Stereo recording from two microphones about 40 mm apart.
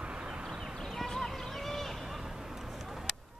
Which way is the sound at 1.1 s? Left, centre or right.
Centre.